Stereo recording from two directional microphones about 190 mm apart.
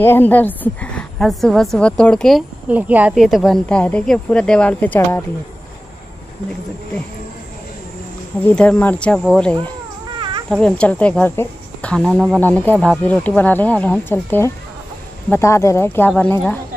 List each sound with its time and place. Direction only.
0.0 s a woman's voice: 10° left (ahead or behind)
8.5 s a woman's voice: 5° left (ahead or behind)
10.1 s a sound: 25° right (ahead or behind)
10.5 s speech: 5° left (ahead or behind)
12.0 s speech: 5° right (ahead or behind)
12.4 s speech: 10° left (ahead or behind)